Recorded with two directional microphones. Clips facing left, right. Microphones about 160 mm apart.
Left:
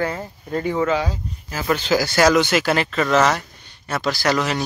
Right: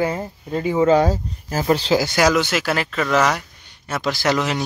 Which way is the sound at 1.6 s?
30° right (ahead or behind).